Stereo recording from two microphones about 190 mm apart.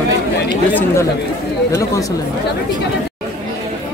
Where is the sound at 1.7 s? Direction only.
15° left (ahead or behind).